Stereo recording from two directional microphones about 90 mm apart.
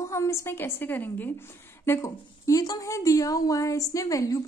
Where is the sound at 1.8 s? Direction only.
30° left (ahead or behind).